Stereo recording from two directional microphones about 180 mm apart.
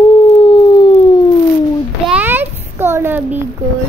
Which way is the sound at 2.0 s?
10° right (ahead or behind).